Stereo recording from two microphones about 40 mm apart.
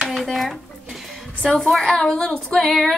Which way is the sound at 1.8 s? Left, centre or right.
Centre.